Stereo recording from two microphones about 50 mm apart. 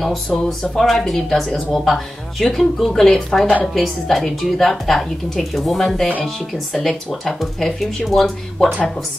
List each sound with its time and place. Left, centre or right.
0.5 s speech: centre